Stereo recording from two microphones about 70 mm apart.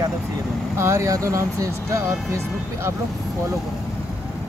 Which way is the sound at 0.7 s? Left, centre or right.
Right.